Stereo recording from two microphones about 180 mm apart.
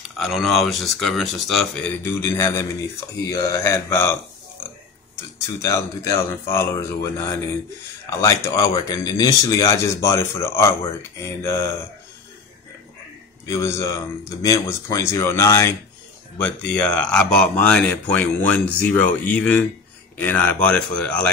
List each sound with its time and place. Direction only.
0.2 s speech: centre (ahead or behind)
2.0 s speech: 15° left (ahead or behind)
5.6 s speech: 15° left (ahead or behind)
13.5 s speech: 15° left (ahead or behind)